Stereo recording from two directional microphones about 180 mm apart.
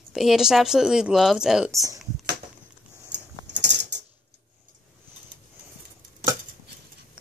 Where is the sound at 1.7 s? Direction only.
20° right (ahead or behind).